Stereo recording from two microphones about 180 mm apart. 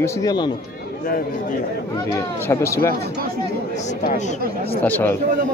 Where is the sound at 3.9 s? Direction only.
40° left (ahead or behind).